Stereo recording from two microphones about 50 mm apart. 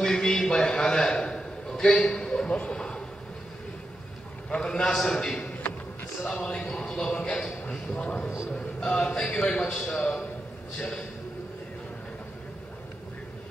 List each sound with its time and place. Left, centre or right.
0.0 s a sound: centre
2.5 s a man's voice: left
4.6 s a man's voice: centre